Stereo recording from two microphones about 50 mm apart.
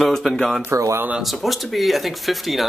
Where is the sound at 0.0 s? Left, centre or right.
Centre.